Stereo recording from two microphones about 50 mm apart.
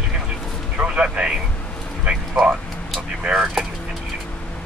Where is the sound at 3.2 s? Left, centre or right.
Centre.